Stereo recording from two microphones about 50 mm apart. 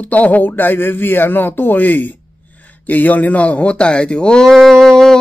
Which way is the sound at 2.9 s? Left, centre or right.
Left.